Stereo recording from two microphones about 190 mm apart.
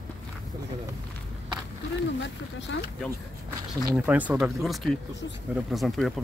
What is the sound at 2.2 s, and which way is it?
Speech, 70° left (ahead or behind).